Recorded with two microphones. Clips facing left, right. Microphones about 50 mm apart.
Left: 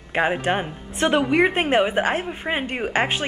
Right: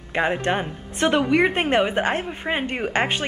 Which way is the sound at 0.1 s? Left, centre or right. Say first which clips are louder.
Left 1 dB; centre.